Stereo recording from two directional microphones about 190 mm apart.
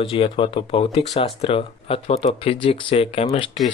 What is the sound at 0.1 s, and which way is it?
Speech, 25° left (ahead or behind).